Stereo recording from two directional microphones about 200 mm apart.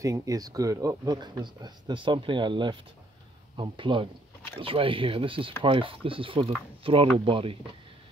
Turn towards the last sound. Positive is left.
turn(degrees=-25)  # may be behind; listen again after turning